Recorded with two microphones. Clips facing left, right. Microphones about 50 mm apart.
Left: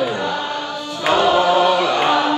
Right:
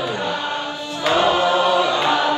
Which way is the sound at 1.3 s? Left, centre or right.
Left.